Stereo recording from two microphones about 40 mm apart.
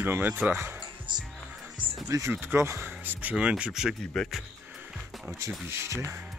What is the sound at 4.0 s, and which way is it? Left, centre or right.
Speech, centre.